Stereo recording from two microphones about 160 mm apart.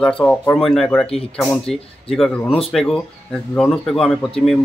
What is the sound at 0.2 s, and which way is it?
A man's voice, 5° left (ahead or behind).